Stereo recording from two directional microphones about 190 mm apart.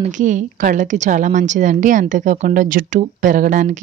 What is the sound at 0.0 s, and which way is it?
A woman's voice, 40° right (ahead or behind).